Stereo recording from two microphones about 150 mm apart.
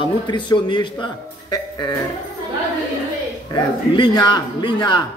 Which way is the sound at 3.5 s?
30° left (ahead or behind).